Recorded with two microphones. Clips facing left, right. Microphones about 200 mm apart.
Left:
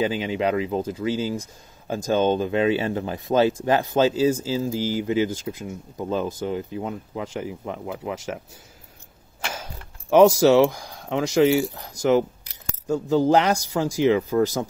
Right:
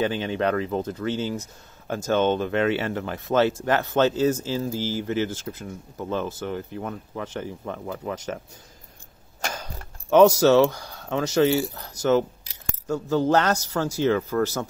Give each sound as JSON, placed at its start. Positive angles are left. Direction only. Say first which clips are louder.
{"t": 0.0, "sound": "speech", "louder": "left 1 dB", "side_deg": 10}
{"t": 9.4, "sound": "a sound", "louder": "right 1 dB", "side_deg": -45}
{"t": 10.0, "sound": "speech", "louder": "left 1 dB", "side_deg": 10}